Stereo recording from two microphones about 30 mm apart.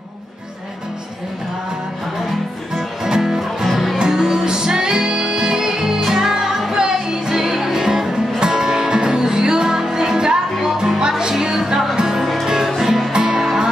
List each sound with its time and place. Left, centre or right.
2.1 s music: centre
3.6 s music: centre
4.0 s music: centre